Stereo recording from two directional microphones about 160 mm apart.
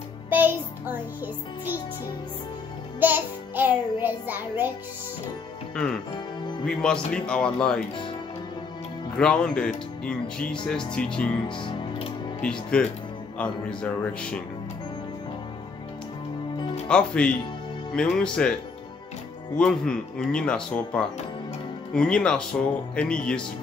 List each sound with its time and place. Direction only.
0.3 s music: 10° right (ahead or behind)
3.0 s a child's voice: 10° right (ahead or behind)
6.1 s music: 30° left (ahead or behind)
6.6 s speech: 5° left (ahead or behind)
9.1 s speech: 5° left (ahead or behind)
11.4 s music: 30° left (ahead or behind)
12.4 s speech: 5° left (ahead or behind)
16.8 s speech: 5° left (ahead or behind)
19.6 s speech: 5° left (ahead or behind)